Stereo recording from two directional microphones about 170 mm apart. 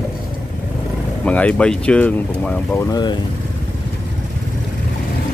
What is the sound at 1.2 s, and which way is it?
Speech, 5° left (ahead or behind).